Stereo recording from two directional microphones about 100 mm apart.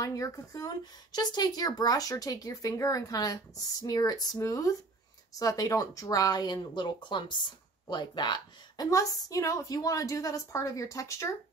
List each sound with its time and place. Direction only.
0.0 s speech: 35° left (ahead or behind)
8.9 s speech: 35° left (ahead or behind)